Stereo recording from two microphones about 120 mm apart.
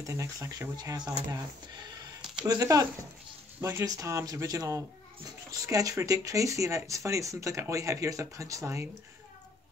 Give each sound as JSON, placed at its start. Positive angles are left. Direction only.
{"t": 0.0, "sound": "speech", "side_deg": -25}
{"t": 2.4, "sound": "speech", "side_deg": -30}